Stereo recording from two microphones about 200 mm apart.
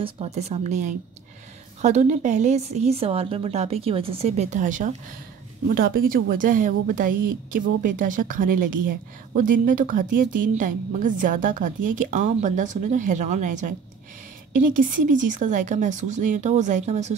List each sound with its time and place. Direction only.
0.0 s a woman's voice: 30° right (ahead or behind)